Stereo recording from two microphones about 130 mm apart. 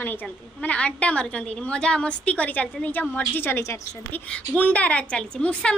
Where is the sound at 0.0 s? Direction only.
15° left (ahead or behind).